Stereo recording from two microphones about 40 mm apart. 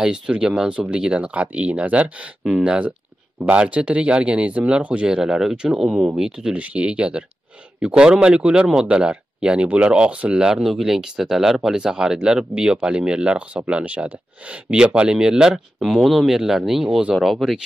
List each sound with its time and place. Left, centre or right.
0.0 s speech: centre
5.0 s speech: centre
6.5 s speech: right; by 17.6 s centre